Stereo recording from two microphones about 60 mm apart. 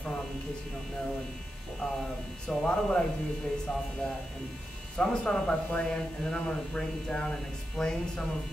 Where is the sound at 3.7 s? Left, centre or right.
Centre.